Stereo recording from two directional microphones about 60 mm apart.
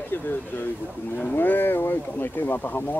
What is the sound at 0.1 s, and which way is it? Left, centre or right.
Speech, left.